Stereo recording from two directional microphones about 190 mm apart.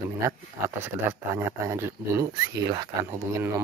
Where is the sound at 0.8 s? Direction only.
15° right (ahead or behind).